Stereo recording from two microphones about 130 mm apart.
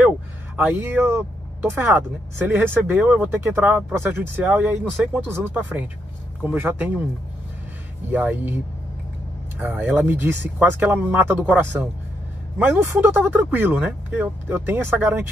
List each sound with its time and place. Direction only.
0.6 s speech: 15° right (ahead or behind)
8.1 s speech: 10° right (ahead or behind)
9.6 s speech: 15° right (ahead or behind)